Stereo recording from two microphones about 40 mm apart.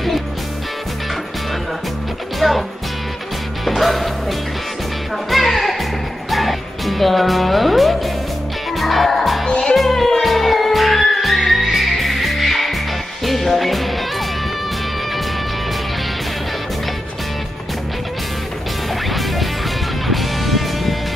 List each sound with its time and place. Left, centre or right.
2.4 s music: centre
3.6 s music: centre
5.3 s music: centre
9.5 s music: left
9.8 s music: centre
19.0 s music: centre